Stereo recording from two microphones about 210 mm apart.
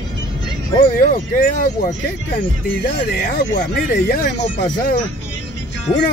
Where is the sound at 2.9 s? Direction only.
45° left (ahead or behind).